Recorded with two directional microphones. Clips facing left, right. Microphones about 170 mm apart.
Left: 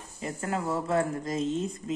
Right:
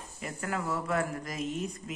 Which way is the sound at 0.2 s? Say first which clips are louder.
Left 3 dB; 25° left (ahead or behind).